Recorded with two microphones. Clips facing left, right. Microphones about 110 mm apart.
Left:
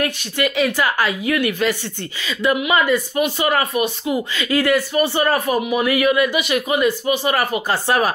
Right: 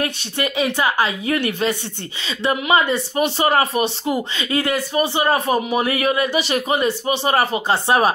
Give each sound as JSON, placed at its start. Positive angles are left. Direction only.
{"t": 0.0, "sound": "a woman's voice", "side_deg": -25}